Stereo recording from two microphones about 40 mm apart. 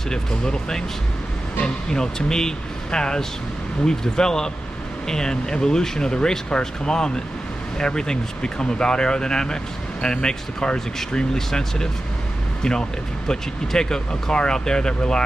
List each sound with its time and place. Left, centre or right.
0.1 s speech: centre
13.3 s speech: centre